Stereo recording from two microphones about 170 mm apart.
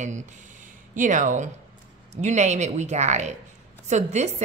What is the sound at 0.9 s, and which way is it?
A woman's voice, 50° right (ahead or behind).